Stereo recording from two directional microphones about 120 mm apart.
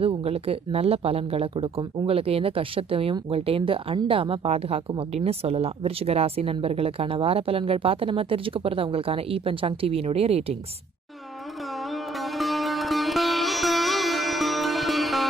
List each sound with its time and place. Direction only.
0.0 s speech: 55° right (ahead or behind)
12.4 s music: centre (ahead or behind)